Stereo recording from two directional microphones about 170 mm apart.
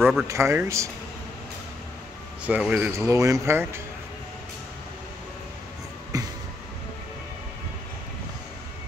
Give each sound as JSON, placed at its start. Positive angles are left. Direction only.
{"t": 0.0, "sound": "speech", "side_deg": 0}
{"t": 0.3, "sound": "speech", "side_deg": -15}
{"t": 2.4, "sound": "speech", "side_deg": -5}
{"t": 2.9, "sound": "speech", "side_deg": -15}
{"t": 6.1, "sound": "a sound", "side_deg": -20}